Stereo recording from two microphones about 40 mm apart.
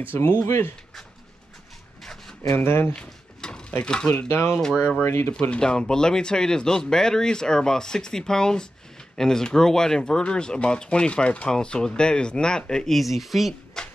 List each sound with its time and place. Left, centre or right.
0.1 s speech: left
2.5 s speech: left
2.9 s a sound: centre
3.8 s speech: left
4.3 s speech: left
5.6 s speech: centre
12.9 s speech: centre